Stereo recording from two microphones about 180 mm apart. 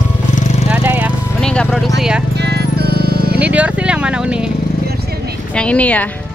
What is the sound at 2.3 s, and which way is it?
Music, 65° right (ahead or behind).